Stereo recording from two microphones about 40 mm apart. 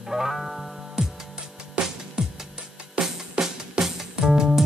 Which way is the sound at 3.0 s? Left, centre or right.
Centre.